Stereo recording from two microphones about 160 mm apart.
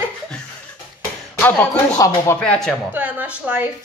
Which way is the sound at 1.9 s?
20° left (ahead or behind).